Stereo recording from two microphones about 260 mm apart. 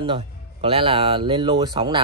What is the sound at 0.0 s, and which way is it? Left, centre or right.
Speech, right.